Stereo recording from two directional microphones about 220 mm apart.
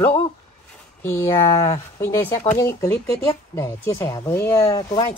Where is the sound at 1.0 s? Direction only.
10° left (ahead or behind).